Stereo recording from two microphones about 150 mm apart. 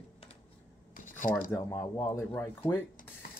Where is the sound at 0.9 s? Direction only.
65° left (ahead or behind).